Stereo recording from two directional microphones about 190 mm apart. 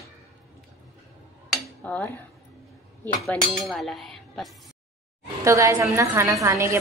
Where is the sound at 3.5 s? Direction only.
Centre (ahead or behind).